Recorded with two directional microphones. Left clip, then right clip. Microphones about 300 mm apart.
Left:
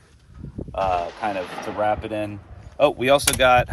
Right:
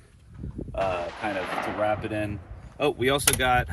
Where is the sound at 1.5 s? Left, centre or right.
Centre.